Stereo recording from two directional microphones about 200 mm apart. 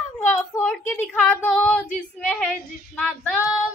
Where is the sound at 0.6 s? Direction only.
10° left (ahead or behind).